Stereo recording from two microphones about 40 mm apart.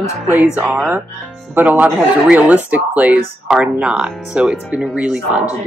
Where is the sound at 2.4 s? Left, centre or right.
Right.